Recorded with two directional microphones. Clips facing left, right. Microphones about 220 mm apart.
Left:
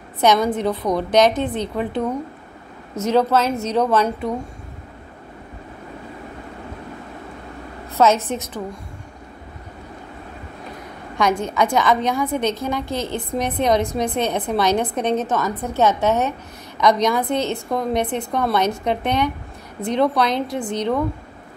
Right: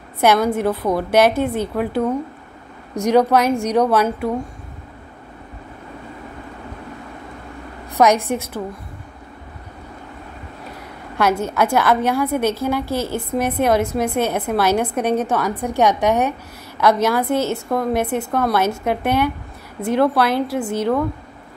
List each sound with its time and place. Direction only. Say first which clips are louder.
0.2 s a woman's voice: right 1 dB; 10° right (ahead or behind)
7.9 s a woman's voice: right 2 dB; 15° right (ahead or behind)
11.1 s a woman's voice: right 1 dB; 5° right (ahead or behind)